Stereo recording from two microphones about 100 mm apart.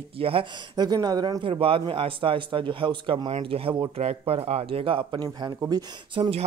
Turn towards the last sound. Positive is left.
turn(degrees=-75)  # may be behind; listen again after turning